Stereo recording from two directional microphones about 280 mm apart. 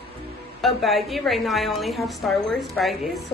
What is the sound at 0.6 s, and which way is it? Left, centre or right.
A woman's voice, centre.